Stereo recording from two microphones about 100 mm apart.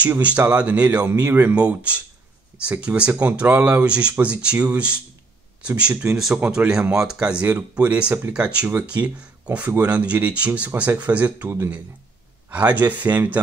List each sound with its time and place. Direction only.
0.0 s speech: 15° right (ahead or behind)